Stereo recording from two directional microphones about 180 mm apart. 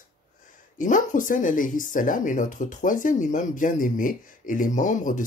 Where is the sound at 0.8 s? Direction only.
45° left (ahead or behind).